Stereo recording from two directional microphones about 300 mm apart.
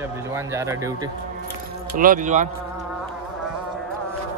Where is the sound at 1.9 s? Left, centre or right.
Right.